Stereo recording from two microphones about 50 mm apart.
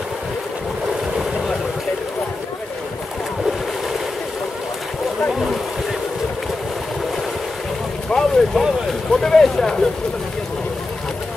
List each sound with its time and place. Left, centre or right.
5.3 s boat: centre
8.1 s boat: centre
9.1 s speech: centre